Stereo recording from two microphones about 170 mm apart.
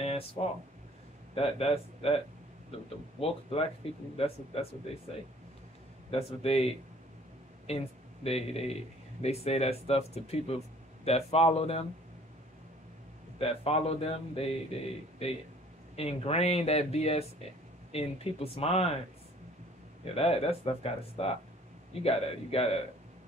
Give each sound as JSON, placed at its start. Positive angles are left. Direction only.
{"t": 1.3, "sound": "a man's voice", "side_deg": 35}
{"t": 6.0, "sound": "a man's voice", "side_deg": 35}
{"t": 13.4, "sound": "a man's voice", "side_deg": 35}
{"t": 20.2, "sound": "a man's voice", "side_deg": 35}